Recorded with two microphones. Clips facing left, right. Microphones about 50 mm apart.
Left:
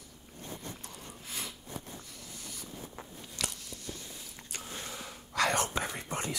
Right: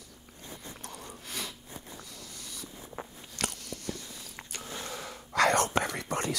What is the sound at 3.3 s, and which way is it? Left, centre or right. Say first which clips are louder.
Biting: right 4 dB; right.